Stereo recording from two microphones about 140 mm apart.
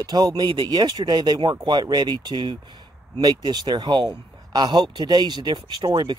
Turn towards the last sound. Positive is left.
turn(degrees=-30)  # may be behind; listen again after turning